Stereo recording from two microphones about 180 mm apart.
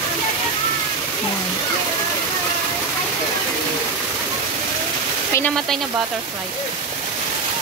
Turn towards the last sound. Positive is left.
turn(degrees=5)  # may be behind; listen again after turning